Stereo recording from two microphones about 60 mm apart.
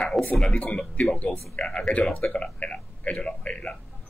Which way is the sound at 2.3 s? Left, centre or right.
Centre.